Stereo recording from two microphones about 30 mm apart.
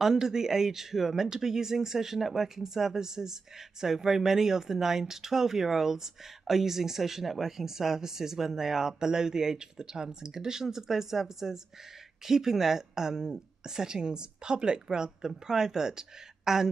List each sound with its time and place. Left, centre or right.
0.0 s a woman's voice: centre